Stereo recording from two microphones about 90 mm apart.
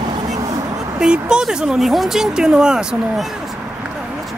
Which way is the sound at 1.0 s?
10° right (ahead or behind).